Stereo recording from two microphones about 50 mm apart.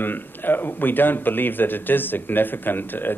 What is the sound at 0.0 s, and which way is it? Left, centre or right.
Speech, left.